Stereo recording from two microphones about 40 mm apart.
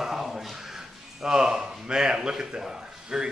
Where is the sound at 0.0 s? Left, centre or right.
Centre.